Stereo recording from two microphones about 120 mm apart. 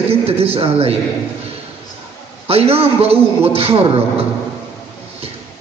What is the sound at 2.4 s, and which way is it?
A man's voice, 55° right (ahead or behind).